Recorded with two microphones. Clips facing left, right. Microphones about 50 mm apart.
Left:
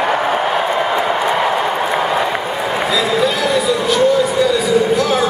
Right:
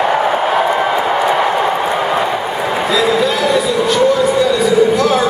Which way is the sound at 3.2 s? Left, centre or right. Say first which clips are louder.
Right 2 dB; centre.